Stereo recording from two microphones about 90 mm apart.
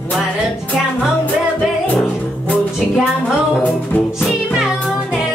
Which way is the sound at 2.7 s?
5° right (ahead or behind).